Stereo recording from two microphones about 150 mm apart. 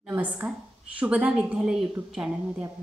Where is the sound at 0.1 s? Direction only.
10° right (ahead or behind).